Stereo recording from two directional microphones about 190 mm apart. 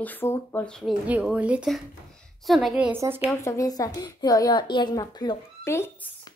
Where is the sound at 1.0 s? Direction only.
10° right (ahead or behind).